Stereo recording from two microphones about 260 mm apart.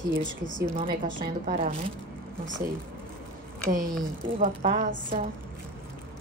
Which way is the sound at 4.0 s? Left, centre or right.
Right.